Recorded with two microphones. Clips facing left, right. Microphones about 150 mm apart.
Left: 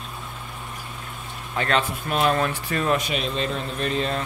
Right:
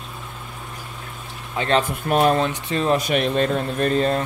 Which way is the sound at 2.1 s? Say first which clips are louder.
Right 5 dB; 40° right (ahead or behind).